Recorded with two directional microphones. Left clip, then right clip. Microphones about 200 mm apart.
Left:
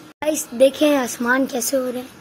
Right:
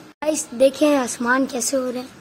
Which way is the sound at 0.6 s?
10° left (ahead or behind).